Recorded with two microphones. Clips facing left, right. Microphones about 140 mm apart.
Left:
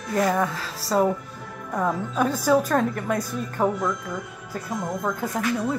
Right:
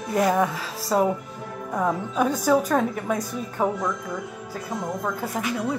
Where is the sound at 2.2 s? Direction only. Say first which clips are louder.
Left 1 dB; 5° left (ahead or behind).